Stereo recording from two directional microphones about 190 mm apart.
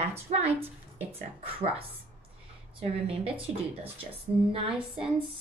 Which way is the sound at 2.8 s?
30° right (ahead or behind).